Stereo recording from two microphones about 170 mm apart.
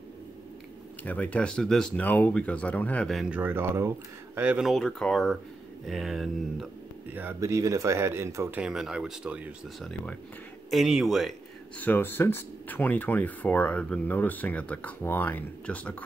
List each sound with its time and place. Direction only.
1.0 s speech: 10° left (ahead or behind)
7.1 s speech: 10° right (ahead or behind)
8.5 s speech: 5° right (ahead or behind)
11.8 s speech: 10° left (ahead or behind)